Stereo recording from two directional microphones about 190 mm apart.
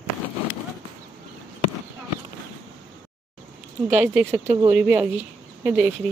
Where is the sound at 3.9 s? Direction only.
10° right (ahead or behind).